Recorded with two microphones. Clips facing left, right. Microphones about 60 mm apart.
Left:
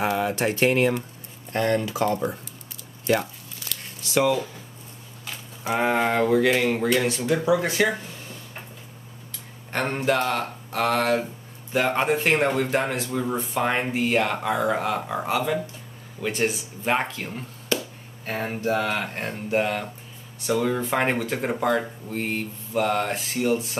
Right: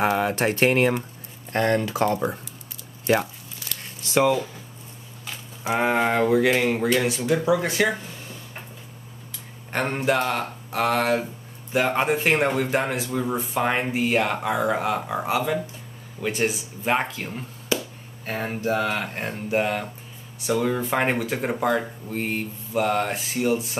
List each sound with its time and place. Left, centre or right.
0.2 s speech: right
3.6 s a sound: centre
4.1 s speech: right
5.2 s speech: centre
9.7 s speech: centre